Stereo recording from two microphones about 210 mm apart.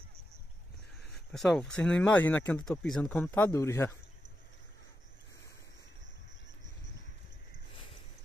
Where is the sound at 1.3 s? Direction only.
Centre (ahead or behind).